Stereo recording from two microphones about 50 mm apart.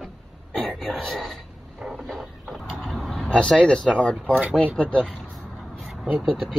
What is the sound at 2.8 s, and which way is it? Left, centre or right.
Vehicle, centre.